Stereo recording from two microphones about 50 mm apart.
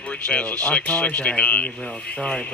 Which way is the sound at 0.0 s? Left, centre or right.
Left.